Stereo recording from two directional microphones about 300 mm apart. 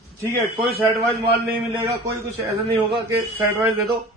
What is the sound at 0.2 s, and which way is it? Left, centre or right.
Speech, centre.